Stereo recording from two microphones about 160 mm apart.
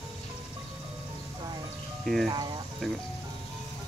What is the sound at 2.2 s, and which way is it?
Speech, 25° right (ahead or behind).